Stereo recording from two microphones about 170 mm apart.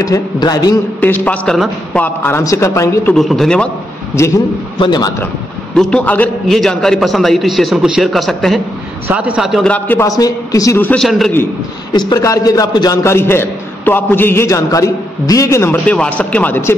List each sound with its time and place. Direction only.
0.0 s a man's voice: 20° left (ahead or behind)
1.0 s a man's voice: 10° left (ahead or behind)
3.2 s a man's voice: centre (ahead or behind)
4.7 s a man's voice: 25° left (ahead or behind)
5.8 s a man's voice: 5° left (ahead or behind)
11.9 s a man's voice: 25° left (ahead or behind)